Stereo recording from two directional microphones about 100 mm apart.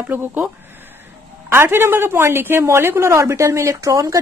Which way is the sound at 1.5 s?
25° right (ahead or behind).